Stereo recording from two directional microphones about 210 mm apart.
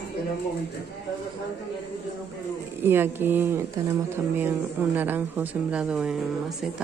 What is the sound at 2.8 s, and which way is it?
Speech, 10° right (ahead or behind).